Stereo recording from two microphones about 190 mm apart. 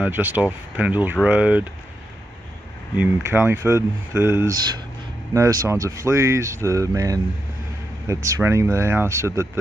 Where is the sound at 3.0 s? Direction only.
10° right (ahead or behind).